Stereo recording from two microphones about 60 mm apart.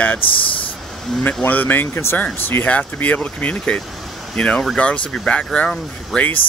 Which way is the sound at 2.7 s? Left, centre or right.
Left.